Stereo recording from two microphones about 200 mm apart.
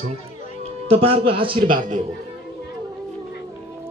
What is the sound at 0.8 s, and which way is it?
Speech, 30° right (ahead or behind).